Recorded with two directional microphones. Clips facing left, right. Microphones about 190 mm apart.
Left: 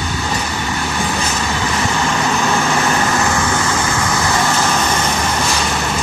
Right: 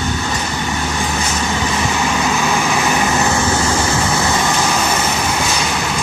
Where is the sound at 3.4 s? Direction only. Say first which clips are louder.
Right 1 dB; 30° right (ahead or behind); by 5.9 s 5° right (ahead or behind).